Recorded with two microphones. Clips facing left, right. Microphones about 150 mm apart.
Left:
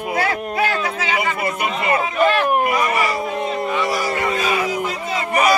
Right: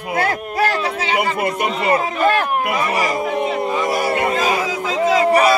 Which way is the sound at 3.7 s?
50° right (ahead or behind).